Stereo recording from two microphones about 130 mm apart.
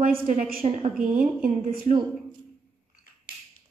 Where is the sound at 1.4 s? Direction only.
90° right.